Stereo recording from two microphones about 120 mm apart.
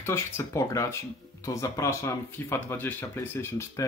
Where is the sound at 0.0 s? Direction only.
20° left (ahead or behind).